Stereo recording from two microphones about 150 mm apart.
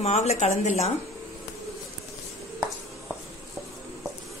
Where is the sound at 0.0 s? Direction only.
45° left (ahead or behind).